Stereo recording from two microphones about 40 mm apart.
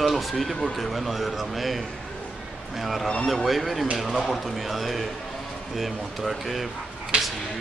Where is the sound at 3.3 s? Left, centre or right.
Centre.